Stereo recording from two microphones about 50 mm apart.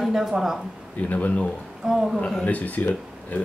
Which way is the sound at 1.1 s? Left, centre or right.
Left.